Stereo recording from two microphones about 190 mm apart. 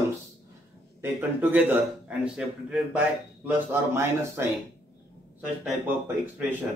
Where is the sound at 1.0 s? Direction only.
10° right (ahead or behind).